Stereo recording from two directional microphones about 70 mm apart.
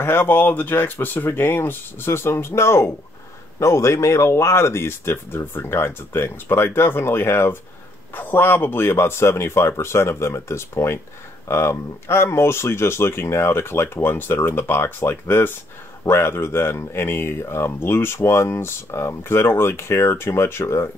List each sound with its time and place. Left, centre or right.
0.0 s speech: left